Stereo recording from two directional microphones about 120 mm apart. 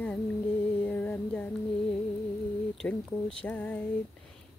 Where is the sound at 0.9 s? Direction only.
15° left (ahead or behind).